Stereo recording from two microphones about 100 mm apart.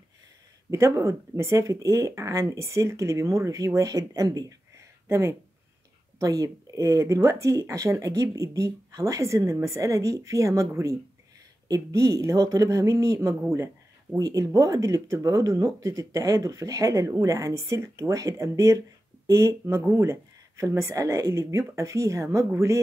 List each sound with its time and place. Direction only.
0.7 s speech: 30° right (ahead or behind)